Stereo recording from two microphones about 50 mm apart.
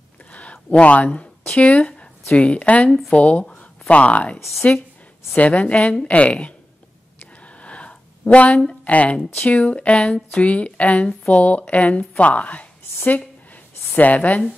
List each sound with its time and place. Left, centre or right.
0.3 s a sound: left
2.3 s a woman's voice: left
5.4 s a woman's voice: left